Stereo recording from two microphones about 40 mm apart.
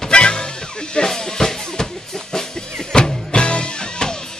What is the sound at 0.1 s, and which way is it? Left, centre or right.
Music, left.